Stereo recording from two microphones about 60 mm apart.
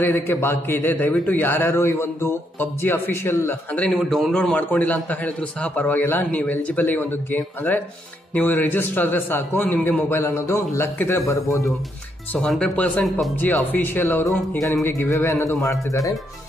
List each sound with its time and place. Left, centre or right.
0.0 s a man's voice: left
1.7 s a man's voice: left
3.9 s a man's voice: centre
4.5 s a man's voice: left
8.4 s a man's voice: left
10.2 s a man's voice: left
11.1 s a man's voice: left
12.4 s speech: centre
12.7 s a man's voice: left
14.6 s a man's voice: left